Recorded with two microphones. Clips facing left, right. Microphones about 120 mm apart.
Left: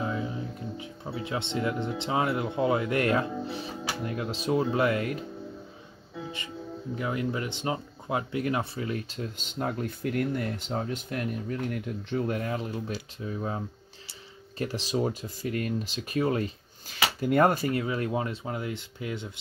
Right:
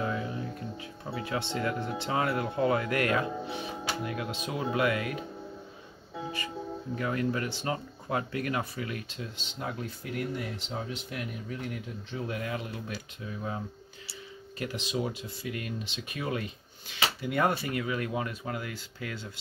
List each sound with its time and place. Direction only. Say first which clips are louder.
0.0 s speech: left 1 dB; 20° left (ahead or behind)
7.0 s speech: even; 20° left (ahead or behind)
14.6 s speech: left 4 dB; 35° left (ahead or behind); by 19.4 s 20° left (ahead or behind)